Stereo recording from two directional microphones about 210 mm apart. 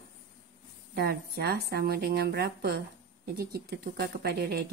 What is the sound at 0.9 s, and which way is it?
A woman's voice, 50° right (ahead or behind).